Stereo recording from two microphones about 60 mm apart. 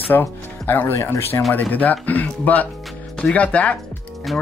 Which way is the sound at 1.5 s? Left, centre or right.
Left.